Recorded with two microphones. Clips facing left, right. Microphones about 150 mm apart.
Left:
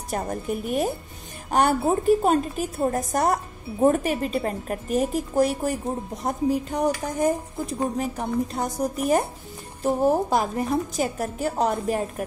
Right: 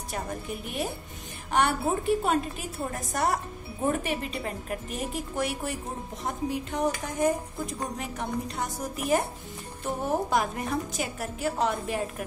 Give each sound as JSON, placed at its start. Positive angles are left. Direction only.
{"t": 0.1, "sound": "a woman's voice", "side_deg": 45}
{"t": 8.0, "sound": "a woman's voice", "side_deg": 40}